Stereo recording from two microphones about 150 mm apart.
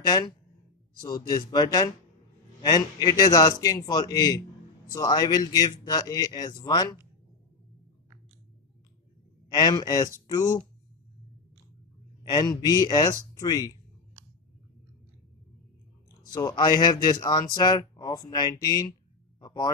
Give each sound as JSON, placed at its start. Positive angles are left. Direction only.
{"t": 0.0, "sound": "speech", "side_deg": 25}
{"t": 9.5, "sound": "speech", "side_deg": 30}
{"t": 12.2, "sound": "speech", "side_deg": 30}
{"t": 16.3, "sound": "speech", "side_deg": 25}